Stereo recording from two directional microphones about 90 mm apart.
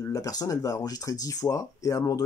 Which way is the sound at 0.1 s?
45° left (ahead or behind).